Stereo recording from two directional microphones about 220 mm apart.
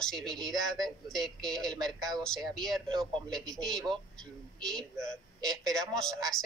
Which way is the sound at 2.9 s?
20° right (ahead or behind).